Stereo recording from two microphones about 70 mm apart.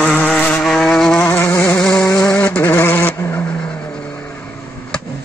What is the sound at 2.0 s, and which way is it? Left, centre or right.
Vehicle, left.